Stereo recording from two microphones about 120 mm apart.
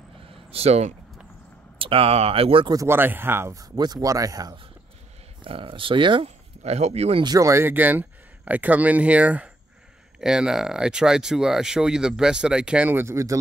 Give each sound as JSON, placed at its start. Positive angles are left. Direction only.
{"t": 0.3, "sound": "vehicle", "side_deg": -55}
{"t": 1.8, "sound": "speech", "side_deg": -50}
{"t": 2.7, "sound": "speech", "side_deg": -25}
{"t": 3.7, "sound": "speech", "side_deg": -35}
{"t": 5.4, "sound": "speech", "side_deg": -45}
{"t": 6.2, "sound": "speech", "side_deg": -60}
{"t": 7.2, "sound": "speech", "side_deg": -25}